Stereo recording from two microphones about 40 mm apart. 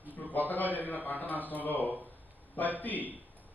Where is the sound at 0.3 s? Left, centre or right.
Left.